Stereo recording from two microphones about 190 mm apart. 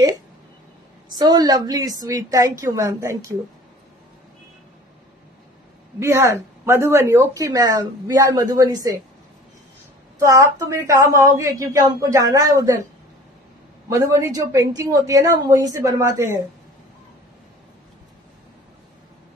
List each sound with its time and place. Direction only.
1.1 s a woman's voice: 20° right (ahead or behind)
5.9 s speech: 15° right (ahead or behind)
10.1 s speech: 15° right (ahead or behind)
13.8 s speech: 15° right (ahead or behind)